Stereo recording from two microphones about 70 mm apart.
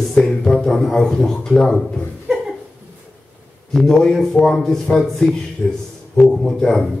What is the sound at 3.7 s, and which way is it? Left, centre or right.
A man's voice, centre.